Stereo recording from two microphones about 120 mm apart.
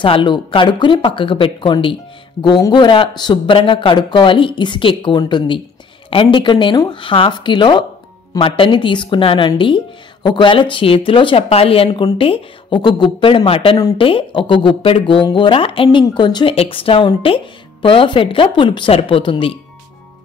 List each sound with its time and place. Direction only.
0.0 s speech: 45° left (ahead or behind)
16.5 s speech: 50° left (ahead or behind)